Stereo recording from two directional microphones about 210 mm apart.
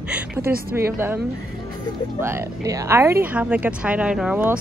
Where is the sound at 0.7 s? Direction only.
10° right (ahead or behind).